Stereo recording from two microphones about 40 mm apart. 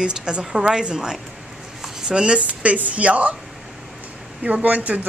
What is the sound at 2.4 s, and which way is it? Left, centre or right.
Speech, right.